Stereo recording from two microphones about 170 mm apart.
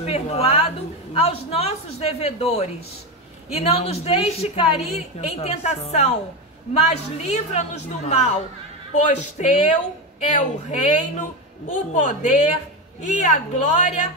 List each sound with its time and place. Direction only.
0.0 s a woman's voice: 40° left (ahead or behind)